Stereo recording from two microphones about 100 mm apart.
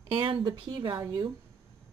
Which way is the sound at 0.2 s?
55° right (ahead or behind).